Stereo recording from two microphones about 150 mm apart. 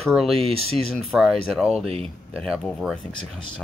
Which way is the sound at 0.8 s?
Centre (ahead or behind).